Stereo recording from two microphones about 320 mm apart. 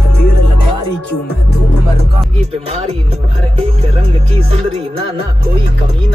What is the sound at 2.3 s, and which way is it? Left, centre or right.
Speech, centre.